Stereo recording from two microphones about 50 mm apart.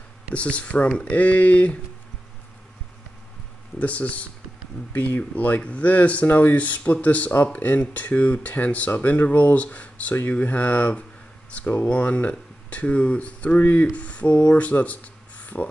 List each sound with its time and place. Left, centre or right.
0.3 s speech: left
3.8 s speech: left